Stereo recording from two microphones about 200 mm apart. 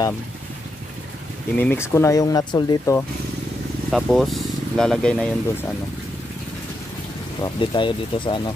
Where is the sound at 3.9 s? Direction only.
Centre (ahead or behind).